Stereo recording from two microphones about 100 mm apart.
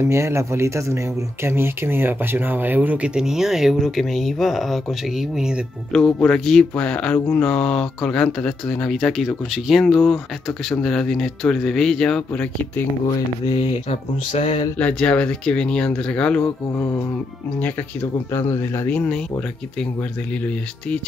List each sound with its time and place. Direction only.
0.0 s speech: 30° right (ahead or behind)
3.2 s speech: 5° right (ahead or behind)
13.5 s mantra: 85° left
14.8 s speech: 10° left (ahead or behind)
18.3 s speech: 30° left (ahead or behind)
18.9 s speech: 10° left (ahead or behind)